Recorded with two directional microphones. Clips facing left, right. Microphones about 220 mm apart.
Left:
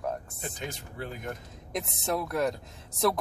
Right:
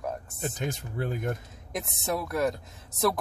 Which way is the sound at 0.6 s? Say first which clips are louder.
Right 6 dB; 45° right (ahead or behind).